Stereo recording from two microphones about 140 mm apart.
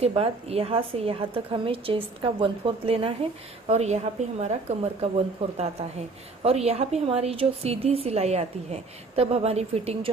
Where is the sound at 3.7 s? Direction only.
50° right (ahead or behind).